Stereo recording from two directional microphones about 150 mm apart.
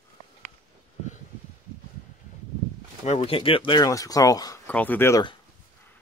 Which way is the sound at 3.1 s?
45° left (ahead or behind).